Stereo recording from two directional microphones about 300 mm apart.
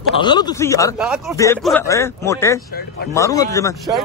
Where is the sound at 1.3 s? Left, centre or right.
Centre.